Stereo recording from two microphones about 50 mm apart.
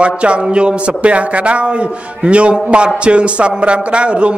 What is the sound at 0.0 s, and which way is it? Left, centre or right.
A man's voice, right.